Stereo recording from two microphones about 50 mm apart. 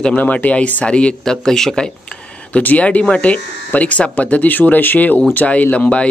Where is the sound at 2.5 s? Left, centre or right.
Left.